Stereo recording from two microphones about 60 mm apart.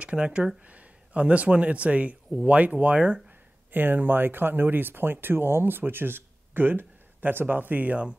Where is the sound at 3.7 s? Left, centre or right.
Right.